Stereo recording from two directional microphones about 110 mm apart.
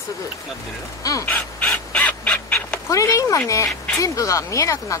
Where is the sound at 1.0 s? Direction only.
30° left (ahead or behind).